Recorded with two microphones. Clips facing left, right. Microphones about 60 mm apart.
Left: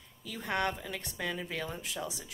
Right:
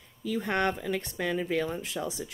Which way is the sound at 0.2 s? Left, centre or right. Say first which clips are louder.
Right 5 dB; right.